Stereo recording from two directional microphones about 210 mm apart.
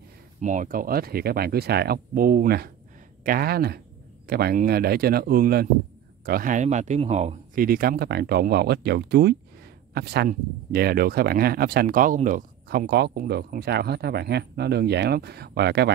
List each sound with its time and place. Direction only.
0.4 s speech: 35° right (ahead or behind)